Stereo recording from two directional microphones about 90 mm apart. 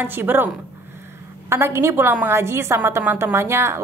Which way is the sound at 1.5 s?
30° right (ahead or behind).